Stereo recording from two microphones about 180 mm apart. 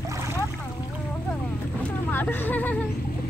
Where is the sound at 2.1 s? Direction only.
10° left (ahead or behind).